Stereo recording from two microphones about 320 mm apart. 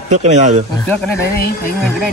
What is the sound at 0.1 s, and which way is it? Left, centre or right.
Speech, right.